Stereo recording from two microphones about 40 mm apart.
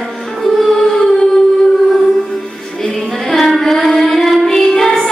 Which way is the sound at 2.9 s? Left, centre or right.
Centre.